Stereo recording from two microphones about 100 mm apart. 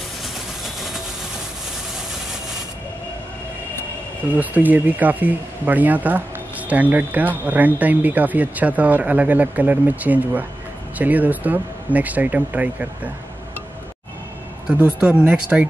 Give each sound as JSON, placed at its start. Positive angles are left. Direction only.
{"t": 4.4, "sound": "speech", "side_deg": -15}
{"t": 14.7, "sound": "speech", "side_deg": -15}